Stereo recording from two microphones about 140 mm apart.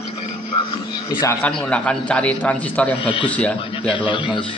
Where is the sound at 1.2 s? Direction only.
15° left (ahead or behind).